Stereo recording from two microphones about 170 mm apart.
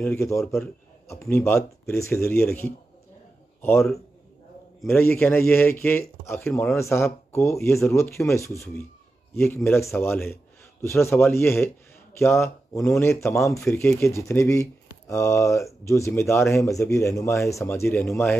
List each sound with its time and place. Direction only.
0.0 s speech: 15° left (ahead or behind)
4.9 s a man's voice: 10° left (ahead or behind)